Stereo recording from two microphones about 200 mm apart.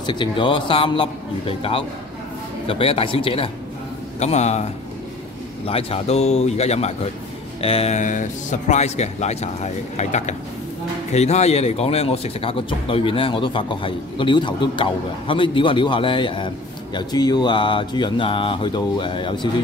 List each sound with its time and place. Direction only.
0.0 s speech: 25° left (ahead or behind)
5.7 s speech: 30° left (ahead or behind)